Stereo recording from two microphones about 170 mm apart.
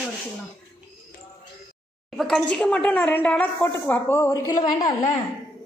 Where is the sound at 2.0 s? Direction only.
Centre (ahead or behind); by 4.6 s 20° left (ahead or behind).